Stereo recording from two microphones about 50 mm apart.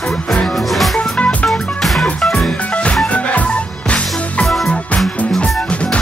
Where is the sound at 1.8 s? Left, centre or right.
Centre.